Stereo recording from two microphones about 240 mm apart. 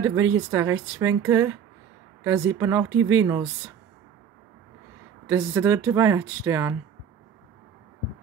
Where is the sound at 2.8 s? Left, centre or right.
Right.